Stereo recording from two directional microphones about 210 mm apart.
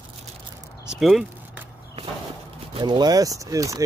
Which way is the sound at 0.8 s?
Centre (ahead or behind).